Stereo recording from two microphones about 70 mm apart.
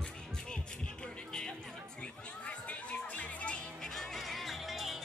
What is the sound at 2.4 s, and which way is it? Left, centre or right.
Music, centre.